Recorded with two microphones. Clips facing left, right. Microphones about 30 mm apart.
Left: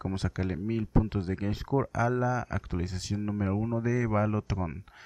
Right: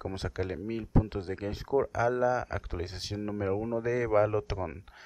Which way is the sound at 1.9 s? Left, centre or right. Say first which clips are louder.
Right 1 dB; centre.